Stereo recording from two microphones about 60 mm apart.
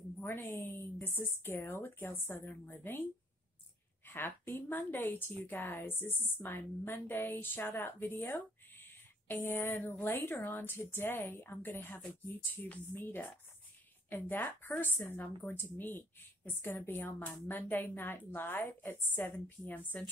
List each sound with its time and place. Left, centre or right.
0.2 s a woman's voice: left